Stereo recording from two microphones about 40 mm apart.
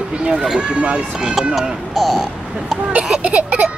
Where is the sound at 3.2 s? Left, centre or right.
Right.